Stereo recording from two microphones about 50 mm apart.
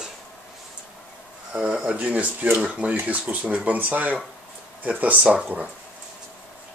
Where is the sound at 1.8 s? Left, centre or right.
Right.